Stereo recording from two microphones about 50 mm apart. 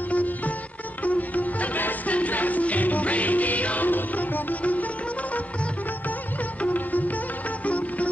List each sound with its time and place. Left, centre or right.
0.1 s sitar: left
1.0 s music: left
6.6 s music: left